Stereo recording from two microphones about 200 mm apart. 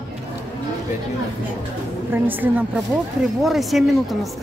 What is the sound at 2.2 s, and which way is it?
Speech, 10° right (ahead or behind).